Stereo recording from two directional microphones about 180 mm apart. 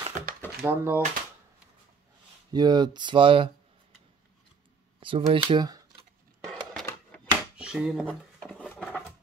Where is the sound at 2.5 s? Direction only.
25° right (ahead or behind).